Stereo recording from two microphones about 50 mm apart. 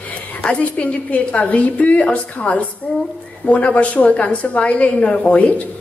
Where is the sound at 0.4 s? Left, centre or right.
Left.